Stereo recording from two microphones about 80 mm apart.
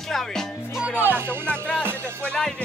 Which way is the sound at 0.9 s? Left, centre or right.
Right.